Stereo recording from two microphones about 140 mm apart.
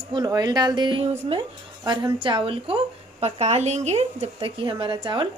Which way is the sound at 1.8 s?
35° right (ahead or behind).